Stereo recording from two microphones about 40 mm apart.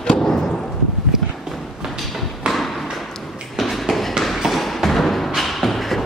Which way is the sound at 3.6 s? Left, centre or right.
Centre.